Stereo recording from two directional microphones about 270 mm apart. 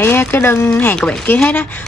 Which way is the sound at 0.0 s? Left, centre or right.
Centre.